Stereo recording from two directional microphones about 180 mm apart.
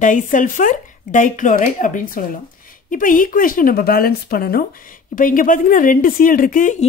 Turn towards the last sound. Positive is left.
turn(degrees=45)  # may be behind; listen again after turning